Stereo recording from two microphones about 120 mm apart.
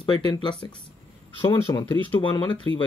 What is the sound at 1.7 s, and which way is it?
Speech, 20° left (ahead or behind).